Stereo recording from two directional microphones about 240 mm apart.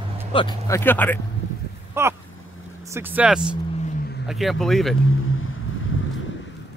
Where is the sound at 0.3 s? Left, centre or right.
Left.